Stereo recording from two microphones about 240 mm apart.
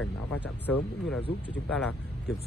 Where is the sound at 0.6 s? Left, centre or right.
Centre.